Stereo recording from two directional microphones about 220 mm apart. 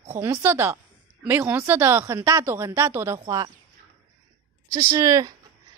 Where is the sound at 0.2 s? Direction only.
10° right (ahead or behind).